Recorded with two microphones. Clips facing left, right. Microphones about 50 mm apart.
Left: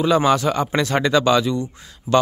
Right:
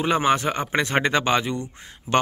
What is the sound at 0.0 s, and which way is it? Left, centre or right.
Speech, right.